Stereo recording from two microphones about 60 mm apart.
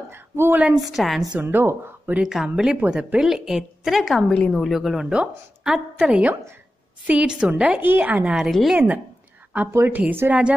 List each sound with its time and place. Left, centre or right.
0.1 s a woman's voice: right
0.7 s a woman's voice: centre
1.4 s speech: right
2.4 s a woman's voice: centre
4.3 s a woman's voice: centre
4.6 s a woman's voice: centre
5.1 s a woman's voice: centre
8.4 s a woman's voice: centre
8.7 s a woman's voice: right
9.7 s a woman's voice: right
9.9 s speech: right